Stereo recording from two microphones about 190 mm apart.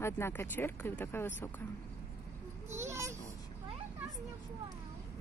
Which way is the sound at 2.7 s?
15° right (ahead or behind).